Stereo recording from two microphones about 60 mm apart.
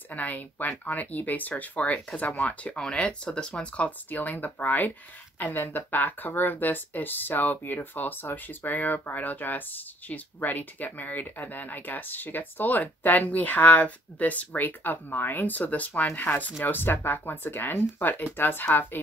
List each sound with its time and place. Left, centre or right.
0.1 s speech: left
4.1 s speech: left